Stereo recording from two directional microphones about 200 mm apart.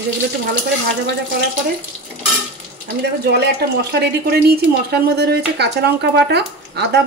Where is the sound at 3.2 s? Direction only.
55° right (ahead or behind).